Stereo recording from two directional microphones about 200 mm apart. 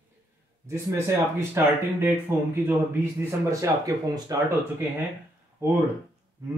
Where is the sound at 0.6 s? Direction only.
15° right (ahead or behind).